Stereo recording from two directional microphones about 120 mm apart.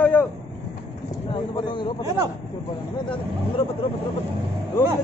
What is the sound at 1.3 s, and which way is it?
Speech, 40° left (ahead or behind).